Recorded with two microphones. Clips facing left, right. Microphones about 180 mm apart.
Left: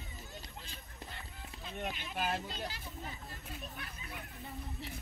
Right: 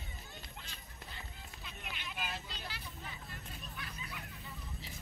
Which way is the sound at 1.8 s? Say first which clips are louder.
Left 7 dB; 40° left (ahead or behind).